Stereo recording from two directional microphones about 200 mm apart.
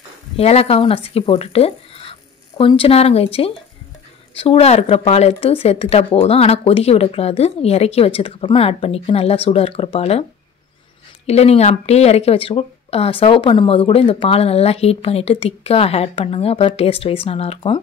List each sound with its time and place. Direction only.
0.4 s speech: 30° left (ahead or behind)
11.2 s speech: 30° left (ahead or behind)